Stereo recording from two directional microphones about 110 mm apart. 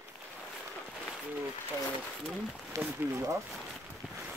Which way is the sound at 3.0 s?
30° right (ahead or behind).